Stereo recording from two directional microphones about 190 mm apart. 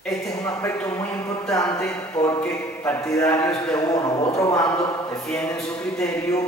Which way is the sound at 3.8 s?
15° left (ahead or behind).